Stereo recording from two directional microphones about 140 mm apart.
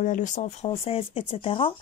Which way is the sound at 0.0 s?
65° left (ahead or behind).